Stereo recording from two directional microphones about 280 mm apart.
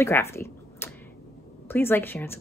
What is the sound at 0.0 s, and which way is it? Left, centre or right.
A woman's voice, centre.